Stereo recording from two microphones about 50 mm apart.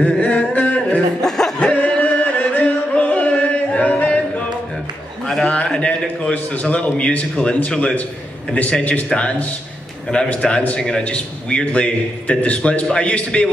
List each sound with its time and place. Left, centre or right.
0.0 s singing: left
1.2 s music: centre
1.6 s music: left
5.2 s a sound: centre
6.3 s a man's voice: left
12.8 s a man's voice: centre